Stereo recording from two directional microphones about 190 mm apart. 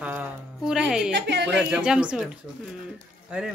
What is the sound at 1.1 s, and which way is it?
Speech, 65° right (ahead or behind).